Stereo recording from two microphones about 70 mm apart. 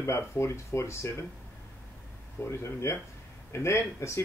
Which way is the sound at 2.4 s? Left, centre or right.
Left.